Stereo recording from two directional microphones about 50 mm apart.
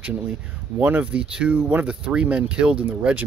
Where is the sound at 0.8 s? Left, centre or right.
Right.